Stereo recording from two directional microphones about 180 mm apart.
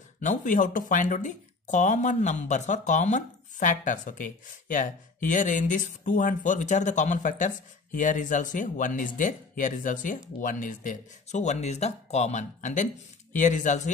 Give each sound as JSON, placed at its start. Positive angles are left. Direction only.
{"t": 0.2, "sound": "speech", "side_deg": 45}